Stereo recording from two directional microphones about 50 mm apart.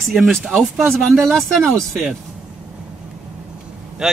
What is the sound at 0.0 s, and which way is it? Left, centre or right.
Speech, centre.